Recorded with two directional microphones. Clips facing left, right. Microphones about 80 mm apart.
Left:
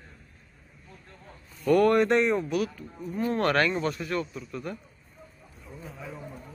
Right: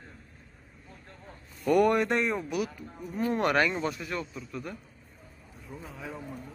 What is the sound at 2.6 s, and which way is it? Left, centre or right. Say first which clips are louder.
Speech: left 2 dB; centre.